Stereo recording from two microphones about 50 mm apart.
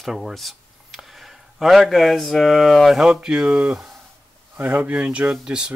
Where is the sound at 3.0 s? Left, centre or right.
Centre.